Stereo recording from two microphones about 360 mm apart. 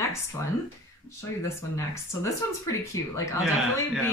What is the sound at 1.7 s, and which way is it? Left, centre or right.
Speech, centre.